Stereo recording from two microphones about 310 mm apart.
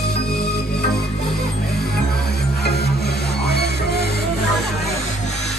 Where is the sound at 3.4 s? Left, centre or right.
Left.